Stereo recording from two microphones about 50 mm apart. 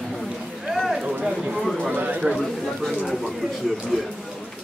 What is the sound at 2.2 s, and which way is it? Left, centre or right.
Speech, centre.